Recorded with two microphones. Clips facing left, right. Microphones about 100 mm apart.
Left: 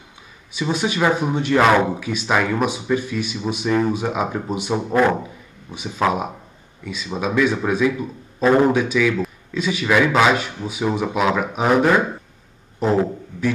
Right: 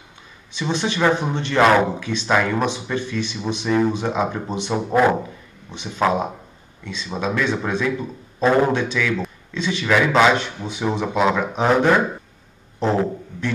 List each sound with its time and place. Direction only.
0.5 s speech: 10° left (ahead or behind)